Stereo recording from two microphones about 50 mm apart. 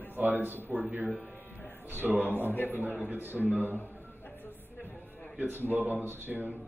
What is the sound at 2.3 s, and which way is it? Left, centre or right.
Speech, left.